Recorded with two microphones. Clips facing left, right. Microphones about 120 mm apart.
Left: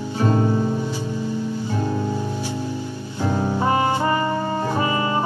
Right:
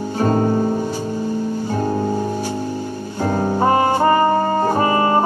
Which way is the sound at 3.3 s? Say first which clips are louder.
Right 4 dB; 45° right (ahead or behind).